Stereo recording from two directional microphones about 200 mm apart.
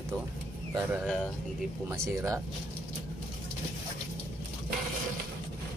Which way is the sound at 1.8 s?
15° right (ahead or behind).